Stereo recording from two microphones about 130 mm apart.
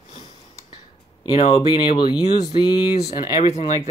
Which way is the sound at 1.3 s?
50° left (ahead or behind).